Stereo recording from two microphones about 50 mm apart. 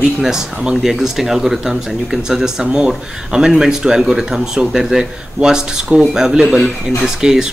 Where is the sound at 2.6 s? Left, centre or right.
Right.